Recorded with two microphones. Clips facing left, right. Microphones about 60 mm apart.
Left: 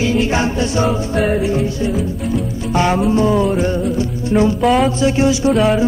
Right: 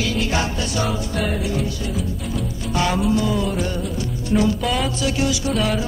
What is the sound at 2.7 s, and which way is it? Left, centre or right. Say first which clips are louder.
Music: left 5 dB; left.